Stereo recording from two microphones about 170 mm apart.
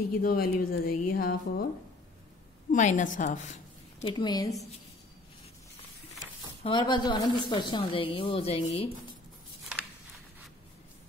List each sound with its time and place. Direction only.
0.2 s a woman's voice: 60° left (ahead or behind)
2.7 s a woman's voice: 50° left (ahead or behind)
4.0 s a woman's voice: 25° left (ahead or behind)
6.6 s a woman's voice: 25° left (ahead or behind)